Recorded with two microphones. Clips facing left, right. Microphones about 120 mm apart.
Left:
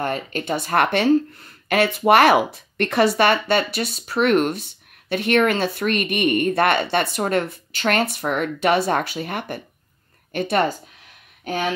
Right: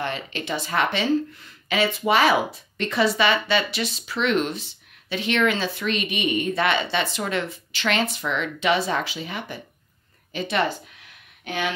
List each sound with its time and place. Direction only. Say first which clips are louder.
0.0 s speech: left 4 dB; 45° left (ahead or behind)